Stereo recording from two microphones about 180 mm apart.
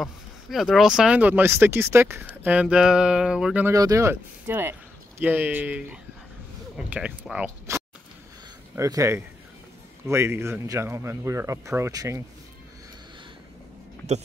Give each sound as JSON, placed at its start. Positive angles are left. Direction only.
{"t": 0.0, "sound": "speech", "side_deg": 0}
{"t": 3.7, "sound": "speech", "side_deg": -20}